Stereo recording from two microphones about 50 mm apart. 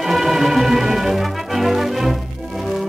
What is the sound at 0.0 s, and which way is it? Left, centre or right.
Brass instrument, centre.